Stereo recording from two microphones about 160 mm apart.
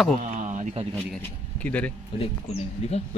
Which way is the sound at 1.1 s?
10° left (ahead or behind).